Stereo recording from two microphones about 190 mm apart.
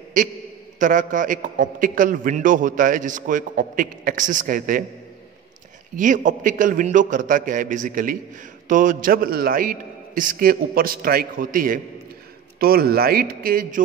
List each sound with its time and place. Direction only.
0.2 s a man's voice: 45° right (ahead or behind)
5.9 s a man's voice: 45° right (ahead or behind)